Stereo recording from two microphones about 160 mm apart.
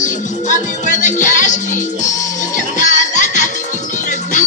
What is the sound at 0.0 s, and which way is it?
Music, 50° left (ahead or behind).